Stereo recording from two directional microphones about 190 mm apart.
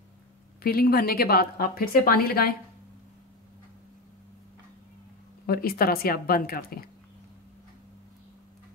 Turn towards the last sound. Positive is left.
turn(degrees=50)  # may be behind; listen again after turning